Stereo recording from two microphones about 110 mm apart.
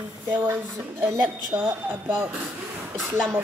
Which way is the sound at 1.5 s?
25° right (ahead or behind).